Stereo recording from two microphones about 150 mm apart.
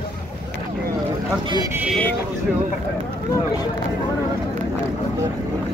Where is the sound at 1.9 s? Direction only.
10° left (ahead or behind).